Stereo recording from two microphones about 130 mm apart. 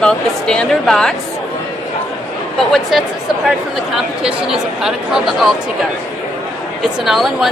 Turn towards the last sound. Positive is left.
turn(degrees=0)  # may be behind; listen again after turning